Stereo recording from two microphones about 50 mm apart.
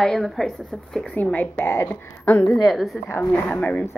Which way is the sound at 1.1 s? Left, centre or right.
Left.